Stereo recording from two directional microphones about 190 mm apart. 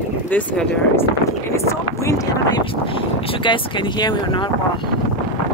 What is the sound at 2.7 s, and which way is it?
Speech, 30° left (ahead or behind).